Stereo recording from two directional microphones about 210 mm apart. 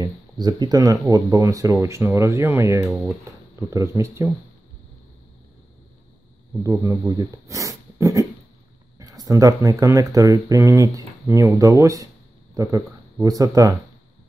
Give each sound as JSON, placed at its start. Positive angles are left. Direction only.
{"t": 0.0, "sound": "speech", "side_deg": -20}
{"t": 6.6, "sound": "speech", "side_deg": -15}